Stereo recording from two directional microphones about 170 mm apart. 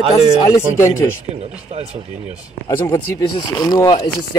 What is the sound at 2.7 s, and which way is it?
Speech, 15° left (ahead or behind).